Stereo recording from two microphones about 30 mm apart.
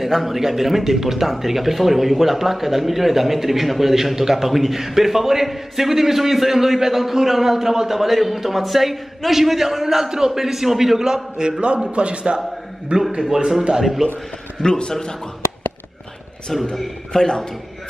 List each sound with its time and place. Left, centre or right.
0.0 s speech: centre
10.0 s a man's voice: right
11.4 s a man's voice: right
11.9 s a man's voice: right
13.7 s speech: centre
14.6 s a man's voice: left
16.5 s a man's voice: centre
17.1 s a man's voice: left